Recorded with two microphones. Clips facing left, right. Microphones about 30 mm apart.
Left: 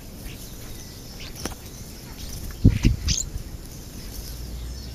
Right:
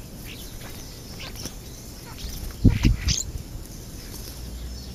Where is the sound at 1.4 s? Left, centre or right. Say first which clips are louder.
Left 5 dB; left.